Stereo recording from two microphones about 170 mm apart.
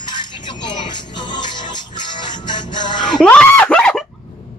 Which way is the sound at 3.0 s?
5° left (ahead or behind).